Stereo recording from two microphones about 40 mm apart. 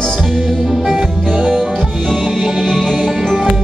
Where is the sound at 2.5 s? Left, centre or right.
Centre.